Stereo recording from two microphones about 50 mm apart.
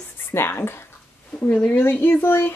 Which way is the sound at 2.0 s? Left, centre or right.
Left.